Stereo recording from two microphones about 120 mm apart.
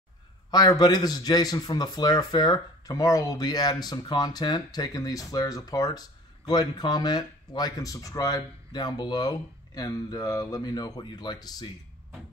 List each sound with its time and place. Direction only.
0.5 s speech: 35° left (ahead or behind)